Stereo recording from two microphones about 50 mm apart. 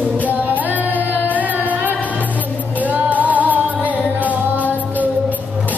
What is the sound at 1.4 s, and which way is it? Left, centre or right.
Music, right.